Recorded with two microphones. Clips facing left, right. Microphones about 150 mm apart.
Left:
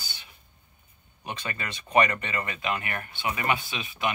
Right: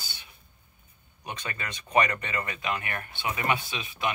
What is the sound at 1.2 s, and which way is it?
Speech, 25° left (ahead or behind).